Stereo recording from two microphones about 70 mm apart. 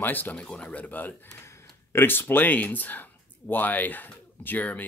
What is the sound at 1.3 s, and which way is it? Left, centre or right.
Speech, left.